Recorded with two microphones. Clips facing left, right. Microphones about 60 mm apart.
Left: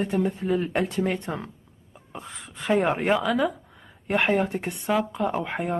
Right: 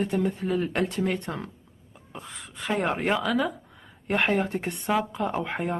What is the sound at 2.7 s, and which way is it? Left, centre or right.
A woman's voice, centre.